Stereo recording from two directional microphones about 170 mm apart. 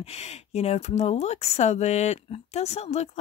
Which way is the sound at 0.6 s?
40° left (ahead or behind).